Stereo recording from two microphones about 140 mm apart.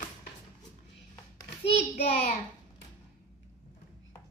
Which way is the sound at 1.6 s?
50° left (ahead or behind).